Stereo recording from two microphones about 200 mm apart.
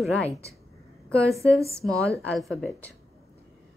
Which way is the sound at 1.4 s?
15° right (ahead or behind).